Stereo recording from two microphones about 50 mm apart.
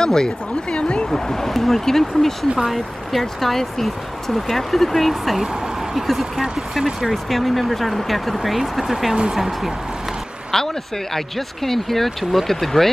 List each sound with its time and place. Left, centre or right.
0.0 s speech: centre
1.1 s speech: centre
2.5 s speech: centre
7.1 s speech: centre